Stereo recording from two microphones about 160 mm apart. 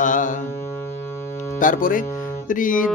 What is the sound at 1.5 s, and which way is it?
Speech, 55° left (ahead or behind).